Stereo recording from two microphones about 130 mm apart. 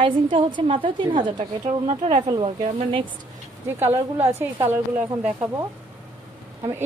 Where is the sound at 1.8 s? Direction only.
50° right (ahead or behind).